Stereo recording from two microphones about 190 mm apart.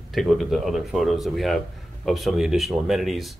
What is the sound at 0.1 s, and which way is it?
Speech, centre (ahead or behind).